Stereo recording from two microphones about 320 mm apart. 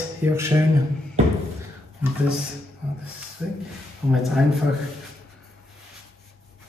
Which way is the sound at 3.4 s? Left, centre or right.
Centre.